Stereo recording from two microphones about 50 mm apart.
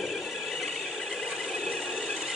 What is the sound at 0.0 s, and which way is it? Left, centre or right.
Squeal, centre.